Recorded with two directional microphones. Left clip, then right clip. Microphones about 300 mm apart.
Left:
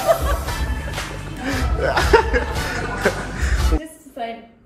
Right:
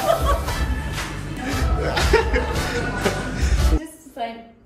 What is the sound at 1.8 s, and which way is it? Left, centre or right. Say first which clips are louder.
Music: left 4 dB; centre.